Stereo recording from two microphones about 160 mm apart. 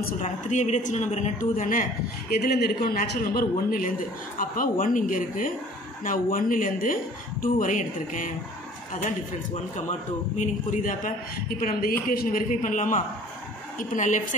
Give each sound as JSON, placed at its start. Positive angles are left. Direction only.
{"t": 0.2, "sound": "speech", "side_deg": 50}
{"t": 10.4, "sound": "speech", "side_deg": 50}